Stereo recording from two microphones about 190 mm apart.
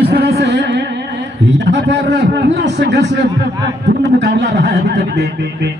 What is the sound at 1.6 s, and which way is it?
A man's voice, 70° right (ahead or behind).